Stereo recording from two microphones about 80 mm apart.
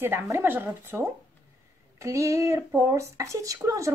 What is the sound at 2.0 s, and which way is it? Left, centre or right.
Speech, right.